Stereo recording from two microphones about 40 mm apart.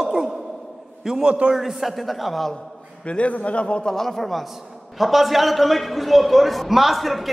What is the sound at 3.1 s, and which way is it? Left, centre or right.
Speech, left.